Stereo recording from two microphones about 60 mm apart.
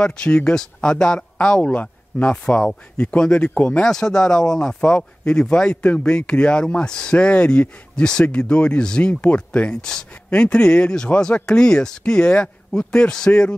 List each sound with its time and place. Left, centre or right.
0.0 s speech: centre